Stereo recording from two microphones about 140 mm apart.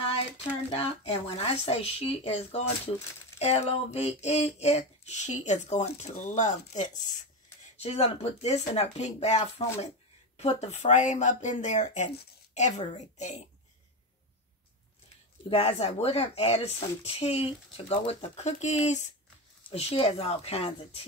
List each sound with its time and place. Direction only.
0.7 s speech: 45° left (ahead or behind)
15.5 s speech: 45° left (ahead or behind)
19.7 s speech: 45° left (ahead or behind)